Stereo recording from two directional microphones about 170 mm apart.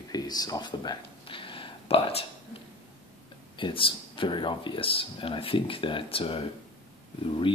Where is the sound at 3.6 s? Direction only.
30° left (ahead or behind).